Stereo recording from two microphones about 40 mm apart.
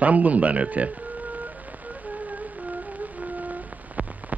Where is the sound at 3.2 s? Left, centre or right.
Right.